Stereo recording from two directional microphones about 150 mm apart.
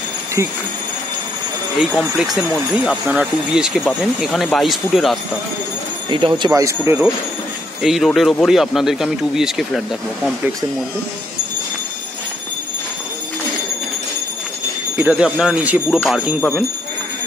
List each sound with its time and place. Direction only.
1.8 s speech: centre (ahead or behind)
6.0 s speech: 30° right (ahead or behind); by 7.1 s 15° right (ahead or behind)
7.8 s speech: centre (ahead or behind)
15.0 s speech: 10° right (ahead or behind)